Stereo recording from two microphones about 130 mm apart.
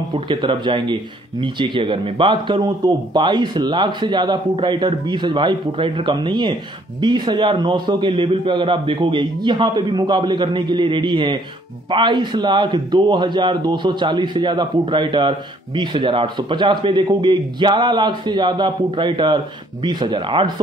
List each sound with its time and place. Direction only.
0.1 s a man's voice: 40° right (ahead or behind)